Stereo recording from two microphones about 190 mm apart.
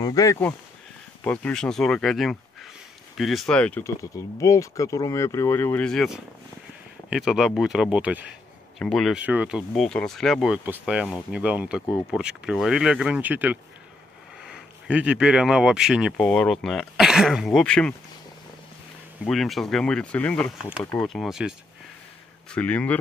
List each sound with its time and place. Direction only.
0.0 s speech: 20° left (ahead or behind)
19.2 s speech: centre (ahead or behind)